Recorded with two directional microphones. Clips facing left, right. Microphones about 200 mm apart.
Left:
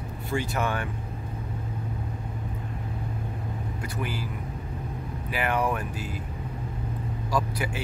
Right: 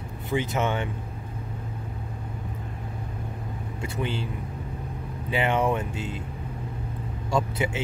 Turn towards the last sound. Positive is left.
turn(degrees=-25)  # may be behind; listen again after turning